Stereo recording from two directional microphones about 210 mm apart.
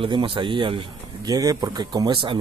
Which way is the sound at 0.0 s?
25° right (ahead or behind).